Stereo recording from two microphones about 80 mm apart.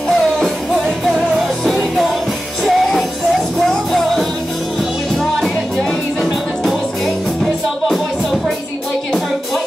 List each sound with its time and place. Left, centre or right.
0.4 s music: centre
6.2 s music: centre